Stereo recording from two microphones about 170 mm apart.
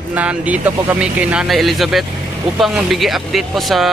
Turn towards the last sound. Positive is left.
turn(degrees=0)  # may be behind; listen again after turning